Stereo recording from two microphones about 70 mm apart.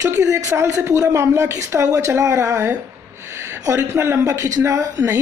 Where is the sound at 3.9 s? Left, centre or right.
Right.